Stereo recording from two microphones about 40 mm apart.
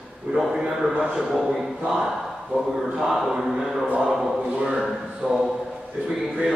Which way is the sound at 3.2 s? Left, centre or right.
Centre.